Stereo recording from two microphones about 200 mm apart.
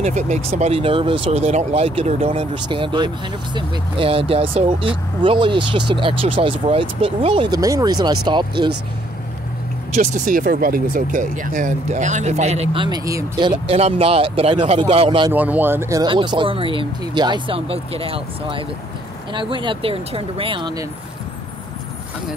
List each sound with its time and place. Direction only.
0.0 s speech: 35° right (ahead or behind)
9.9 s speech: 40° right (ahead or behind); by 13.5 s 20° right (ahead or behind)
13.7 s speech: 30° right (ahead or behind)
15.3 s speech: 10° right (ahead or behind); by 20.8 s 25° right (ahead or behind)